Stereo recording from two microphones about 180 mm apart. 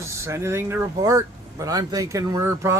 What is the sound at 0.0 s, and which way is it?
Speech, 15° right (ahead or behind).